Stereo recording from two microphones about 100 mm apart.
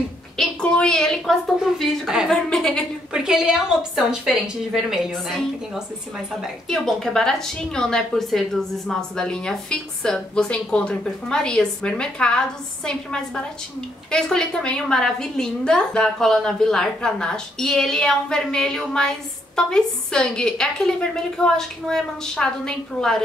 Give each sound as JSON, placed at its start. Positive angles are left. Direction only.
{"t": 0.4, "sound": "a woman's voice", "side_deg": 10}
{"t": 3.1, "sound": "a woman's voice", "side_deg": -5}